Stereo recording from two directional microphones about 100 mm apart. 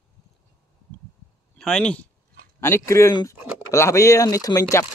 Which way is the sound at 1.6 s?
10° left (ahead or behind).